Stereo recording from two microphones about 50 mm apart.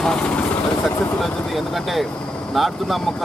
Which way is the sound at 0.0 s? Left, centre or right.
Centre.